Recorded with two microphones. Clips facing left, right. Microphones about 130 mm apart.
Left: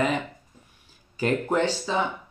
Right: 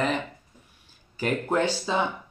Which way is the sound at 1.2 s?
10° right (ahead or behind).